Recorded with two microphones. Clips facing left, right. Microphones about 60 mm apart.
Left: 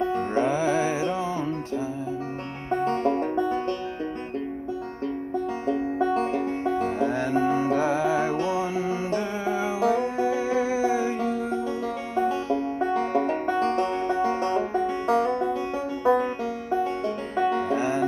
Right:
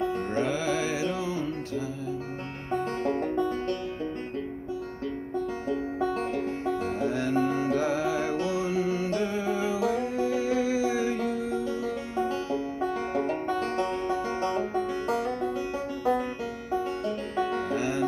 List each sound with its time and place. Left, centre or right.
0.1 s music: left
2.7 s music: left
5.7 s music: left
9.8 s music: left
11.8 s music: left